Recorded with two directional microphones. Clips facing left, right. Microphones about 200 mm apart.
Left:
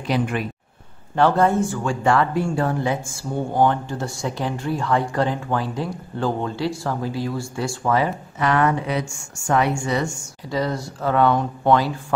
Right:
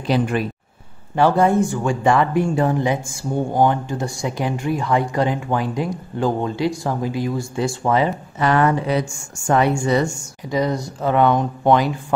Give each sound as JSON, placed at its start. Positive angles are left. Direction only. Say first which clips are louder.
{"t": 0.0, "sound": "speech", "louder": "right 3 dB", "side_deg": -35}
{"t": 1.1, "sound": "speech", "louder": "right 2 dB", "side_deg": -10}
{"t": 8.4, "sound": "speech", "louder": "right 2 dB", "side_deg": -30}
{"t": 10.5, "sound": "speech", "louder": "right 3 dB", "side_deg": -15}